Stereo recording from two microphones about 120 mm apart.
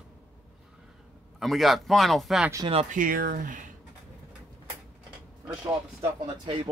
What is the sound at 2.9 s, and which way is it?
Speech, 90° right.